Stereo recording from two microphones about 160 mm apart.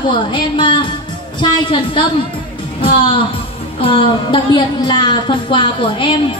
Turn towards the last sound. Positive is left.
turn(degrees=30)  # may be behind; listen again after turning